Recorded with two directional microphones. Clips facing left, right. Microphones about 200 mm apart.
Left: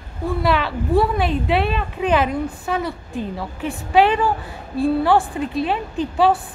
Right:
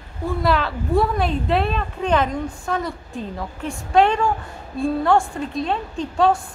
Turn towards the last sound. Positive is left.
turn(degrees=5)  # may be behind; listen again after turning